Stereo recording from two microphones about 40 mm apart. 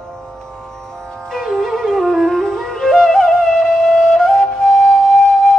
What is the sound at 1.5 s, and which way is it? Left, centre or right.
Music, centre.